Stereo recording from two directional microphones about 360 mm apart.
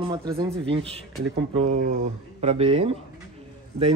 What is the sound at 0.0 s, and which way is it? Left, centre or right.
Speech, centre.